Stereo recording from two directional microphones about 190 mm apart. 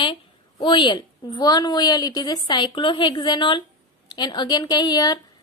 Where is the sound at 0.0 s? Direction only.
25° left (ahead or behind).